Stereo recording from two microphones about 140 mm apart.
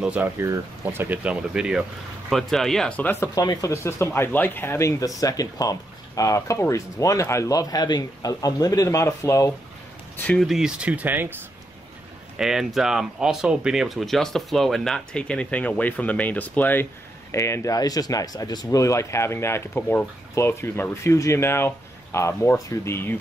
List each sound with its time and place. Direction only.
0.0 s speech: 10° right (ahead or behind)
3.1 s speech: 20° left (ahead or behind)
10.1 s speech: 10° left (ahead or behind); by 11.3 s 15° right (ahead or behind)
12.4 s speech: 5° right (ahead or behind); by 23.1 s 15° left (ahead or behind)